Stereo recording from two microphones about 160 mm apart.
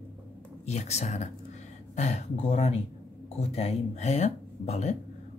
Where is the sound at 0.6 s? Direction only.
45° left (ahead or behind).